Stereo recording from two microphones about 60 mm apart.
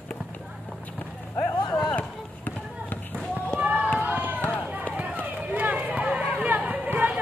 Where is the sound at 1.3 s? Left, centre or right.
Left.